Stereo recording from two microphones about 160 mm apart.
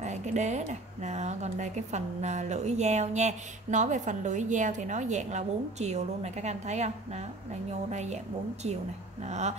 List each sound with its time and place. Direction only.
0.0 s speech: 45° right (ahead or behind)